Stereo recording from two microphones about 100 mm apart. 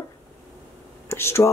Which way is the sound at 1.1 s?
25° left (ahead or behind).